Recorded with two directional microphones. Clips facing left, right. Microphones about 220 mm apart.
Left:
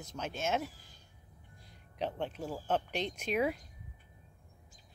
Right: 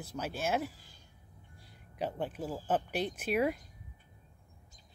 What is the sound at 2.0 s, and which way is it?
Speech, 5° right (ahead or behind).